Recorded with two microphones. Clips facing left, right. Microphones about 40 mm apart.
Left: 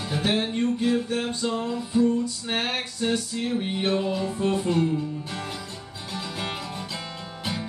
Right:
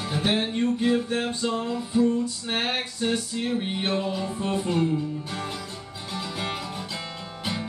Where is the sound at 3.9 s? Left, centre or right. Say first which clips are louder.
Left 2 dB; centre.